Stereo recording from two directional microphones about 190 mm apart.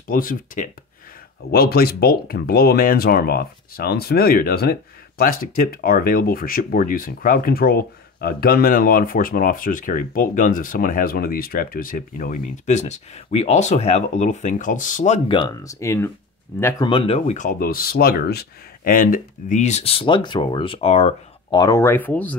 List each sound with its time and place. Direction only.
0.1 s speech: 45° left (ahead or behind); by 16.8 s 10° left (ahead or behind)
16.8 s speech: 25° left (ahead or behind)
21.5 s speech: 15° left (ahead or behind)